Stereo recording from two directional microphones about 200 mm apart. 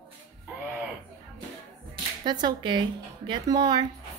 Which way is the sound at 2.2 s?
20° right (ahead or behind).